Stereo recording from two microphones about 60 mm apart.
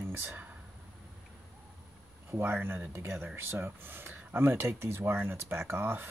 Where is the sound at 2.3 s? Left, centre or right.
Right.